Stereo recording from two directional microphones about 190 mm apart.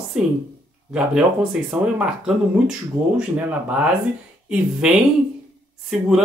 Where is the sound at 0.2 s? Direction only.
5° right (ahead or behind).